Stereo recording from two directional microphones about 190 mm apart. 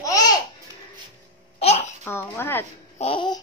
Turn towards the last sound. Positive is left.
turn(degrees=25)  # may be behind; listen again after turning